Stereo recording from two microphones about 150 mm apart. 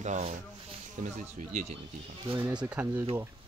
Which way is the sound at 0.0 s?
50° right (ahead or behind).